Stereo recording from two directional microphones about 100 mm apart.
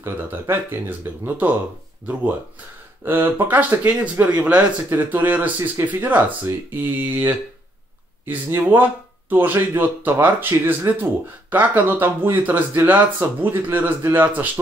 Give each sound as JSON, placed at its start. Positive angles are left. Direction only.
{"t": 0.0, "sound": "speech", "side_deg": -25}
{"t": 3.1, "sound": "speech", "side_deg": -20}
{"t": 8.5, "sound": "speech", "side_deg": -20}